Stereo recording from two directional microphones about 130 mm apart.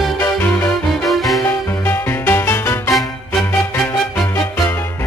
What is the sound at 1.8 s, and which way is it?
Music, 15° left (ahead or behind).